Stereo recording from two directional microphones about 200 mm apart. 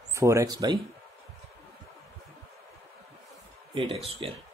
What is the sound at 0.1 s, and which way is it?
Speech, 15° right (ahead or behind).